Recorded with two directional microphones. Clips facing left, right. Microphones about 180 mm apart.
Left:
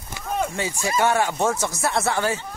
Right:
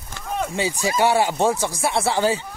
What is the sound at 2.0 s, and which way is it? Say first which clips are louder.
Speech: right 3 dB; 15° right (ahead or behind).